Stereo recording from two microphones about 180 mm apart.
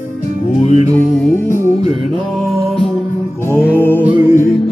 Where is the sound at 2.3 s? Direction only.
5° left (ahead or behind).